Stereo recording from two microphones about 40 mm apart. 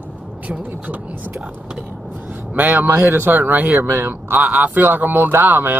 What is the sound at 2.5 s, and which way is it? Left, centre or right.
Speech, right.